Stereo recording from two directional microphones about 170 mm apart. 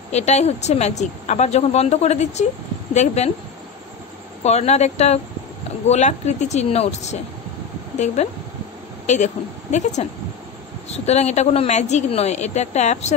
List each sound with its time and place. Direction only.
0.1 s a woman's voice: 40° left (ahead or behind)
4.4 s a woman's voice: 40° left (ahead or behind)
8.2 s a woman's voice: 40° left (ahead or behind)
11.1 s a woman's voice: 40° left (ahead or behind)